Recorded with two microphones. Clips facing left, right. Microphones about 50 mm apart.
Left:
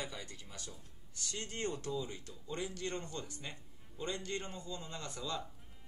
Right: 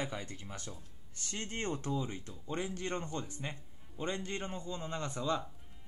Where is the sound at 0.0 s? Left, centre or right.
Right.